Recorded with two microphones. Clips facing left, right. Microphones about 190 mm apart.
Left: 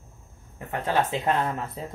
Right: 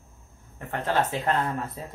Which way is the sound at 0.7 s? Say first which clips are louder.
Left 1 dB; 15° left (ahead or behind).